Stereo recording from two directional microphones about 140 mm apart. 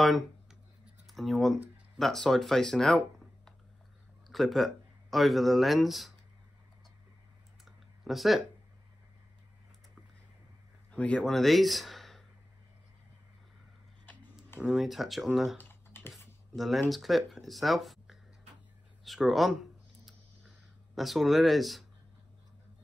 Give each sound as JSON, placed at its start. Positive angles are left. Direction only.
{"t": 0.0, "sound": "speech", "side_deg": 0}
{"t": 4.3, "sound": "speech", "side_deg": 0}
{"t": 7.6, "sound": "a sound", "side_deg": 0}
{"t": 10.9, "sound": "speech", "side_deg": 10}
{"t": 14.6, "sound": "speech", "side_deg": -5}
{"t": 15.7, "sound": "typing", "side_deg": 15}
{"t": 16.1, "sound": "a sound", "side_deg": 0}
{"t": 16.9, "sound": "speech", "side_deg": 0}
{"t": 20.1, "sound": "a sound", "side_deg": 0}